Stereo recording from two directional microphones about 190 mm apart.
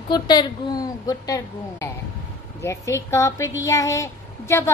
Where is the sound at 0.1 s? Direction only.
20° left (ahead or behind).